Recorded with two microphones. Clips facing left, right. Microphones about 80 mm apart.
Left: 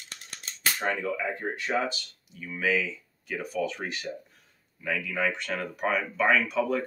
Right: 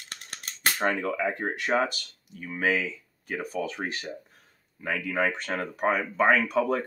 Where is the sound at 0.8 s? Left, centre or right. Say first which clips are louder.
Right 3 dB; right.